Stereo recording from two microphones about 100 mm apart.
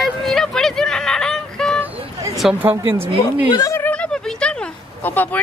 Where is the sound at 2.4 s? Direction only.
5° right (ahead or behind).